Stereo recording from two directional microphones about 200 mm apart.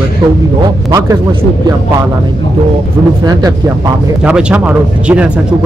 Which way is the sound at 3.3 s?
20° right (ahead or behind).